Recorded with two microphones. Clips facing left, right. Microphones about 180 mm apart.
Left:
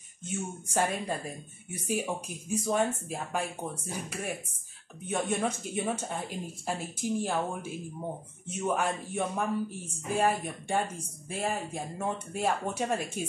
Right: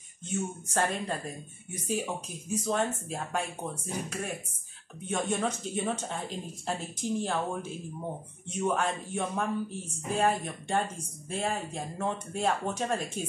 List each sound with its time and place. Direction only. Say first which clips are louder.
0.2 s speech: right 2 dB; 10° left (ahead or behind)